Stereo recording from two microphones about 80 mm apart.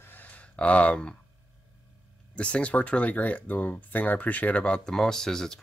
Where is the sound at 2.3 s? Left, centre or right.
Centre.